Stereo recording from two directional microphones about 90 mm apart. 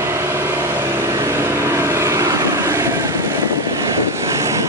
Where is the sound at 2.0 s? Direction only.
35° right (ahead or behind).